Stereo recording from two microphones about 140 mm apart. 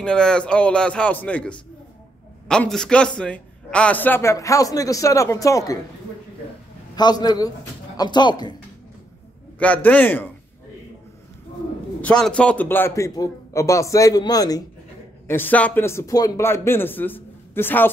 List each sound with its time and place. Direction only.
0.0 s a man's voice: 5° left (ahead or behind); by 5.8 s 25° left (ahead or behind)
7.0 s a man's voice: 30° left (ahead or behind)
9.6 s speech: 10° left (ahead or behind)
12.0 s a man's voice: 5° left (ahead or behind); by 14.6 s 25° left (ahead or behind)
15.2 s speech: 15° left (ahead or behind)